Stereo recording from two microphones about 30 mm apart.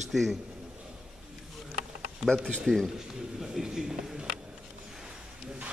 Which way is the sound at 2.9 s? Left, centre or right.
Centre.